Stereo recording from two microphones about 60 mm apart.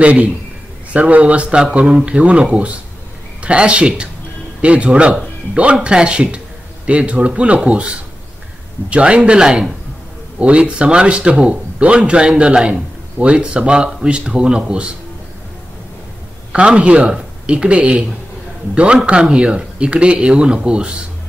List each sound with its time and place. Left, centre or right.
0.0 s speech: right
8.9 s speech: centre
16.5 s speech: centre
19.0 s speech: centre